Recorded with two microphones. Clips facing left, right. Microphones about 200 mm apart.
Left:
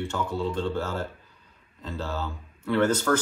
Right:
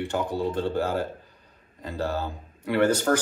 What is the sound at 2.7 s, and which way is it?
Speech, 10° right (ahead or behind).